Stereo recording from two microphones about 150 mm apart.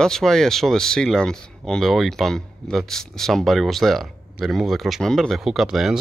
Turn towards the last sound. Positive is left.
turn(degrees=0)  # may be behind; listen again after turning